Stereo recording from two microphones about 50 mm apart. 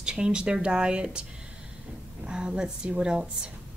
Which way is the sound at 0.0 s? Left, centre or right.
Centre.